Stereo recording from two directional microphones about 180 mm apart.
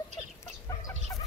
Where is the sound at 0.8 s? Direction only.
20° left (ahead or behind).